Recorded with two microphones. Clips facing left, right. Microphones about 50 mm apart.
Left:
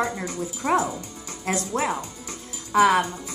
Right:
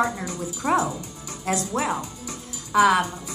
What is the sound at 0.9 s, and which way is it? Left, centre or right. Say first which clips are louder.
Speech: right 1 dB; left.